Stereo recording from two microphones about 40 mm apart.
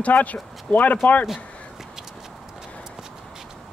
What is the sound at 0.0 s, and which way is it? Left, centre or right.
Speech, left.